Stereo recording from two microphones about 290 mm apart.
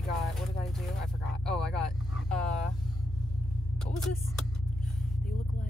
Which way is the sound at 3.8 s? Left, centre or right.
Centre.